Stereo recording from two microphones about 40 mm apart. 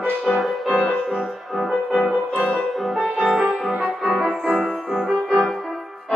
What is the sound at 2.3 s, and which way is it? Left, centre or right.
Music, left.